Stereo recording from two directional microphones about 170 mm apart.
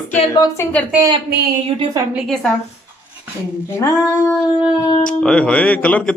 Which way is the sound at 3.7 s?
20° left (ahead or behind).